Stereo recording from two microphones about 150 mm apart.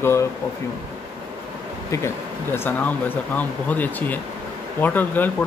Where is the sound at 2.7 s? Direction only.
10° left (ahead or behind).